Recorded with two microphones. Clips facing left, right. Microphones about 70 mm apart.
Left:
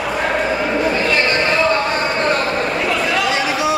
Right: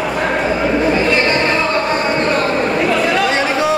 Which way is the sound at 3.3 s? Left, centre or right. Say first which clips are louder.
Right 2 dB; right.